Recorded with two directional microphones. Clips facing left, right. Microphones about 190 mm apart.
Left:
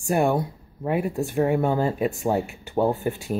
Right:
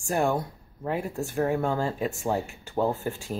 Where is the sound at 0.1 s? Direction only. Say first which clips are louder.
Left 4 dB; 15° left (ahead or behind).